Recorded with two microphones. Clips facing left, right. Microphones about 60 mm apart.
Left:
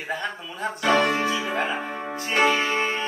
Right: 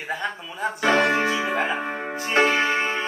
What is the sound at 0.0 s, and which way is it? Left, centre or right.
Speech, centre.